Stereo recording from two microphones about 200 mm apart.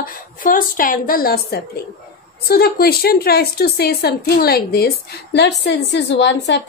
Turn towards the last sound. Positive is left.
turn(degrees=60)  # may be behind; listen again after turning